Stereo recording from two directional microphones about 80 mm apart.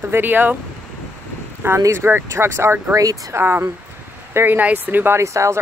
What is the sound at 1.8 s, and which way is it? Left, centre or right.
Speech, right.